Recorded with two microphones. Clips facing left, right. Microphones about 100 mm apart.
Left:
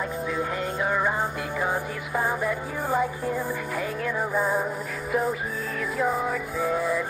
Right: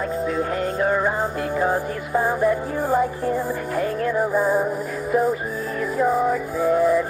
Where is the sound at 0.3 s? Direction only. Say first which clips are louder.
Right 5 dB; 45° right (ahead or behind).